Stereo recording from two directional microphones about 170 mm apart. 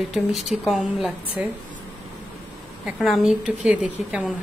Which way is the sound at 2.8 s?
Centre (ahead or behind).